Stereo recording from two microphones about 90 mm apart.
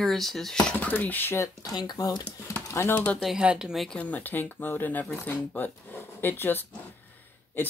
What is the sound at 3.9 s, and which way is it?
Speech, 15° left (ahead or behind).